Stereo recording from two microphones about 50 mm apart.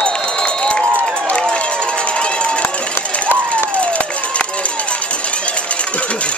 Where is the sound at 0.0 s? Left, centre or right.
Centre.